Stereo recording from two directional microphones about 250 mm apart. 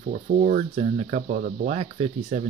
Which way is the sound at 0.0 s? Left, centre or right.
Right.